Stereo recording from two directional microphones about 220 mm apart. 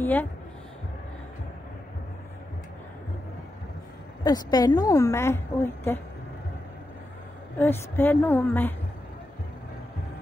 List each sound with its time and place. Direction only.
0.0 s speech: 10° left (ahead or behind)
4.2 s a woman's voice: 15° left (ahead or behind)
7.5 s a woman's voice: 10° left (ahead or behind)